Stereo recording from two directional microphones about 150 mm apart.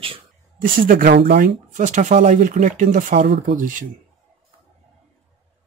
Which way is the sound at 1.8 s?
55° right (ahead or behind).